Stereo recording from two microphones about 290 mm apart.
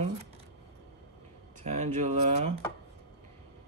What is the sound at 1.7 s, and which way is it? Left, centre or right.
Speech, right.